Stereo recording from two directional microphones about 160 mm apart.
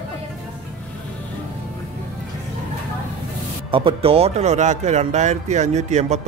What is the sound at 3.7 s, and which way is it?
Speech, 35° right (ahead or behind).